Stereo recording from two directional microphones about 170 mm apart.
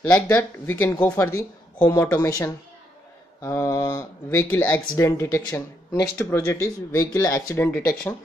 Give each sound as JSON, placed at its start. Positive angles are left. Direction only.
{"t": 0.0, "sound": "speech", "side_deg": 15}